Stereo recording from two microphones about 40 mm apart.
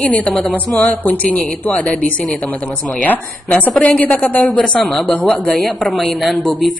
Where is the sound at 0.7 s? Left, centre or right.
Left.